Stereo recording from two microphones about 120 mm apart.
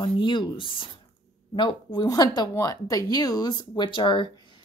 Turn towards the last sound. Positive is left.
turn(degrees=45)  # may be behind; listen again after turning